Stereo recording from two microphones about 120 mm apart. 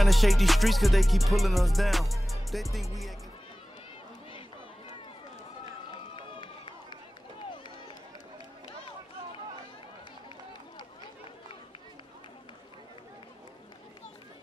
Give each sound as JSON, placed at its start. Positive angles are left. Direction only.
{"t": 0.0, "sound": "music", "side_deg": 0}
{"t": 6.1, "sound": "run", "side_deg": 45}